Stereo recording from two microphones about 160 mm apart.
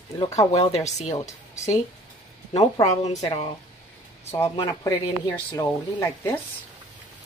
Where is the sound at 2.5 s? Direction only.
45° left (ahead or behind).